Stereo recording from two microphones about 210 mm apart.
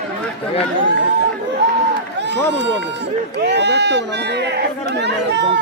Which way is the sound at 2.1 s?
55° right (ahead or behind).